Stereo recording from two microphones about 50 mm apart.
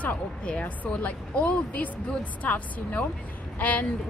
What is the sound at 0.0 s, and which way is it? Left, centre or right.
A woman's voice, left.